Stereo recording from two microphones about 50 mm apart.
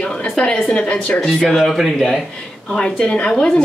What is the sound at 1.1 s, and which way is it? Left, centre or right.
Speech, centre.